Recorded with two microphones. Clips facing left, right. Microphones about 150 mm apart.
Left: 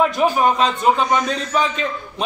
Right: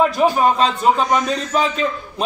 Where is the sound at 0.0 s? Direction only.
Centre (ahead or behind).